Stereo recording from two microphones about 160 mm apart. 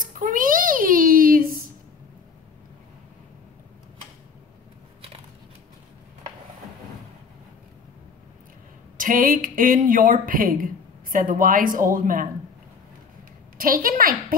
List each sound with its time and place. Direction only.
0.0 s a sound: 55° right (ahead or behind)
8.9 s speech: 60° right (ahead or behind)
13.6 s a woman's voice: 60° right (ahead or behind)